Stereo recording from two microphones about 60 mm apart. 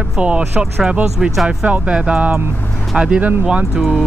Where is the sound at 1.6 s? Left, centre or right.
Centre.